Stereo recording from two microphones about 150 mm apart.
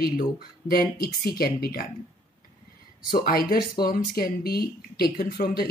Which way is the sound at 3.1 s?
90° left.